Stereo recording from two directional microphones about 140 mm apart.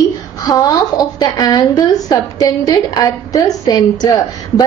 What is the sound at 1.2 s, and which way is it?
A woman's voice, 30° left (ahead or behind).